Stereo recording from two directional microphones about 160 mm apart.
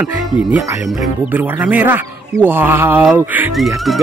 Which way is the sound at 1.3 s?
10° right (ahead or behind).